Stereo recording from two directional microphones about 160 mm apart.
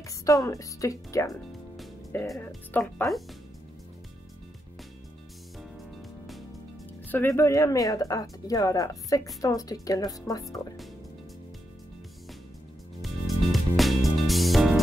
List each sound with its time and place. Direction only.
0.2 s speech: 20° left (ahead or behind)
3.1 s speech: centre (ahead or behind)
7.1 s speech: 15° left (ahead or behind)
13.0 s music: centre (ahead or behind)